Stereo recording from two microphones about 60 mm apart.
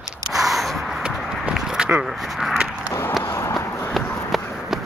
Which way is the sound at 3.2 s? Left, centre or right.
Left.